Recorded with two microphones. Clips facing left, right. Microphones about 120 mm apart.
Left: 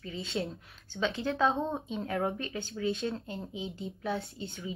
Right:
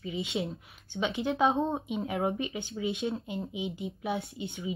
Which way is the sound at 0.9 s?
20° right (ahead or behind).